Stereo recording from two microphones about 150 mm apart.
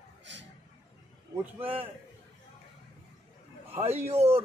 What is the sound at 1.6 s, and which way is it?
Speech, 40° right (ahead or behind).